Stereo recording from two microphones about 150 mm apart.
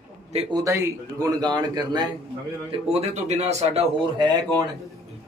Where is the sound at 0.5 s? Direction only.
20° right (ahead or behind).